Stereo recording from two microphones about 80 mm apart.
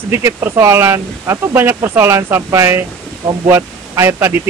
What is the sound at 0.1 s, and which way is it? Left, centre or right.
Speech, right.